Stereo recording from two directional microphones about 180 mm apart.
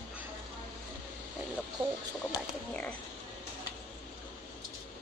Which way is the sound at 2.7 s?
10° left (ahead or behind).